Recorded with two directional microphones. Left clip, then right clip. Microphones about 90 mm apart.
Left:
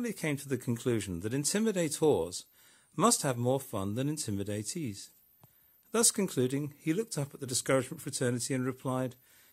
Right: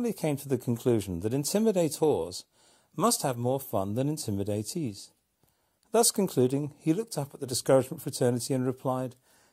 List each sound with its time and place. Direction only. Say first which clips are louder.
0.0 s speech: right 5 dB; 25° right (ahead or behind)
6.1 s speech: right 5 dB; 25° right (ahead or behind)
8.8 s speech: right 5 dB; 40° left (ahead or behind)